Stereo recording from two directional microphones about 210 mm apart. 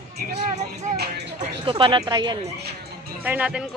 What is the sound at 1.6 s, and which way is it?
Speech, 25° right (ahead or behind).